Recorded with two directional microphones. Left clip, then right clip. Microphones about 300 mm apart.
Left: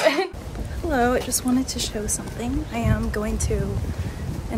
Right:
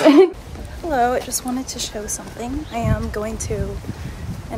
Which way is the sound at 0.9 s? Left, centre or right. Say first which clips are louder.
Right 3 dB; centre.